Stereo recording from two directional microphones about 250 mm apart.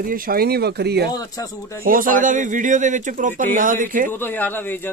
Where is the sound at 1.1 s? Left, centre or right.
Centre.